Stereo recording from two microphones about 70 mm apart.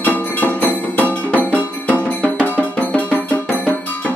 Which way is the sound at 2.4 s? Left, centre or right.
Left.